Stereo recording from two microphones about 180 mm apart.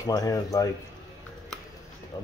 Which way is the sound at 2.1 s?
20° left (ahead or behind).